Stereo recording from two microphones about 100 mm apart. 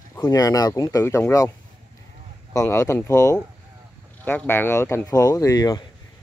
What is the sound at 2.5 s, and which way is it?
Speech, 30° left (ahead or behind).